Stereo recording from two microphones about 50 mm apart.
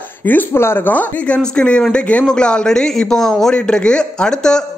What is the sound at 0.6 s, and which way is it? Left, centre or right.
Speech, left.